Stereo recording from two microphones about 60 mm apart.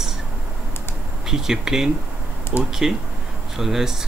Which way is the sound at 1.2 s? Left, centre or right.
Centre.